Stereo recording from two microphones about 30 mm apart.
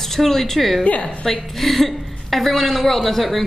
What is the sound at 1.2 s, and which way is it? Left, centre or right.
A woman's voice, centre.